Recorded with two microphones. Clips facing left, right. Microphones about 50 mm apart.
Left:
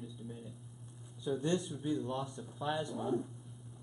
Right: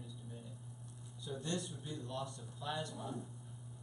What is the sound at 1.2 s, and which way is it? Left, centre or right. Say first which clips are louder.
Speech: left 8 dB; left.